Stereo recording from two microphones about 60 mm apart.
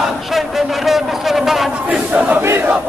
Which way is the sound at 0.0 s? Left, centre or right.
Centre.